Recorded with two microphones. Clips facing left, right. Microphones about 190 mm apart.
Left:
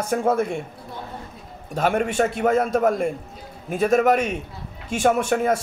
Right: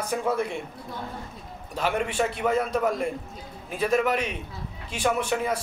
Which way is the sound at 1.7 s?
45° left (ahead or behind).